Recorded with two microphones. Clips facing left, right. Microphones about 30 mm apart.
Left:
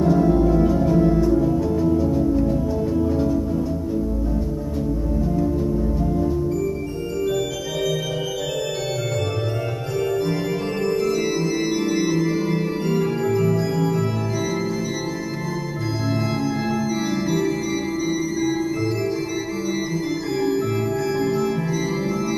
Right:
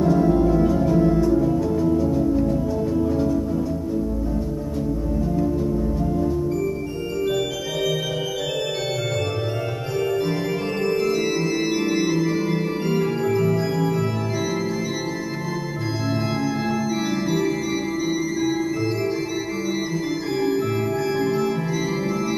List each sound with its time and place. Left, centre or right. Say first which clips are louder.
0.0 s music: left 1 dB; centre
7.2 s organ: even; centre
10.9 s organ: even; centre
21.2 s music: even; centre